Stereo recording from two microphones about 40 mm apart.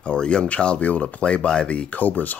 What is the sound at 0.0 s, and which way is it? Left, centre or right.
Speech, left.